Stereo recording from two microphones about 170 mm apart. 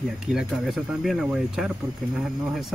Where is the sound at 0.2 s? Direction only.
5° right (ahead or behind).